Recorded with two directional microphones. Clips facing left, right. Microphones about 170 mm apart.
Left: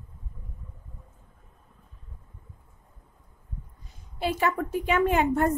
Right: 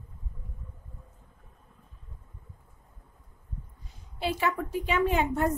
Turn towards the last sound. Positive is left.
turn(degrees=55)  # may be behind; listen again after turning